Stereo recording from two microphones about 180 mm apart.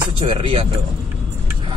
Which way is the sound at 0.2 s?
30° right (ahead or behind).